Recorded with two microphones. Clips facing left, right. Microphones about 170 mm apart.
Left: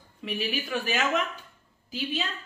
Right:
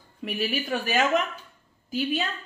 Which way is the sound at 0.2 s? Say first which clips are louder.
Right 3 dB; 45° right (ahead or behind).